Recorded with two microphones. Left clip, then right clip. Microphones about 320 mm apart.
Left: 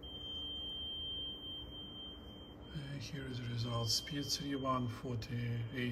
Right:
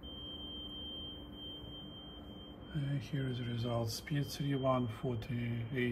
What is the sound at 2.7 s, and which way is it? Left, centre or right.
Speech, centre.